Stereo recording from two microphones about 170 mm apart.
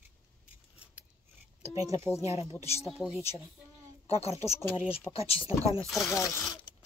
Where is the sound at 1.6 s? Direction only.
40° left (ahead or behind).